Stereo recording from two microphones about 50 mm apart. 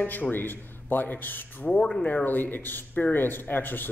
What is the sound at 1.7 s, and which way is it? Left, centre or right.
Speech, centre.